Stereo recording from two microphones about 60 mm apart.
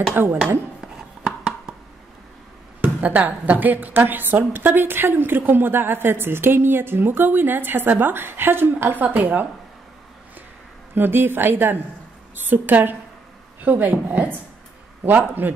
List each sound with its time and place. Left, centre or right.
0.1 s a woman's voice: right
0.7 s chopping: centre
2.8 s a woman's voice: right
11.0 s a woman's voice: right